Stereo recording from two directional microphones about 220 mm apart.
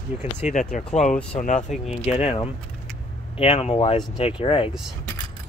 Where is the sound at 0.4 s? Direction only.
35° left (ahead or behind).